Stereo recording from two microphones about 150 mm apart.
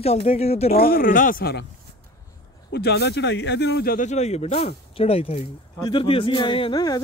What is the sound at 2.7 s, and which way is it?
Speech, 90° left.